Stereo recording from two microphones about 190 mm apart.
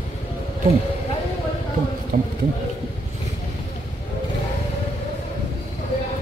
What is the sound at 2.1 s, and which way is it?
Speech, 45° right (ahead or behind).